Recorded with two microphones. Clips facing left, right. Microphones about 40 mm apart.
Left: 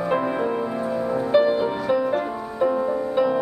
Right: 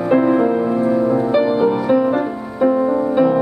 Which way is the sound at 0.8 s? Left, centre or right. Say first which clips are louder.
Right 9 dB; right.